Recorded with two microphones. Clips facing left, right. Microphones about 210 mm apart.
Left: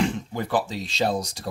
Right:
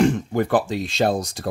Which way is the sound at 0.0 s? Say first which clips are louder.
Right 7 dB; 50° right (ahead or behind).